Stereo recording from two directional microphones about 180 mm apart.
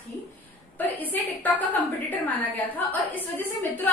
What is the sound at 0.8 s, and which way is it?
A woman's voice, 10° left (ahead or behind).